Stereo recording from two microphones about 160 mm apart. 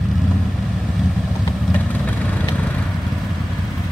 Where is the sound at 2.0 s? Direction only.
10° left (ahead or behind).